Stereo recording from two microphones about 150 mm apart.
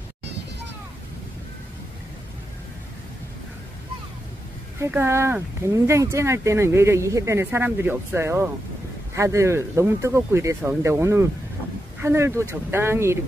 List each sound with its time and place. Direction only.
4.7 s speech: 15° right (ahead or behind)